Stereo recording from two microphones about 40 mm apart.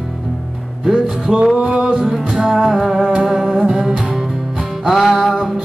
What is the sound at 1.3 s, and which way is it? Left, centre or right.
Music, centre.